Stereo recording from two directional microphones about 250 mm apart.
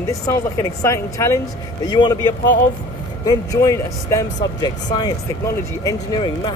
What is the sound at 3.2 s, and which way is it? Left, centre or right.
Speech, centre.